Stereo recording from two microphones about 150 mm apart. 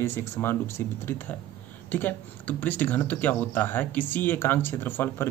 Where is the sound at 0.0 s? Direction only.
15° left (ahead or behind).